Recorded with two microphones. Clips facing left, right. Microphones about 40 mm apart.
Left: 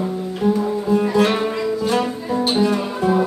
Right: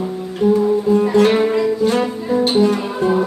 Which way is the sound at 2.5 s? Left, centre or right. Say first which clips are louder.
Right 2 dB; left.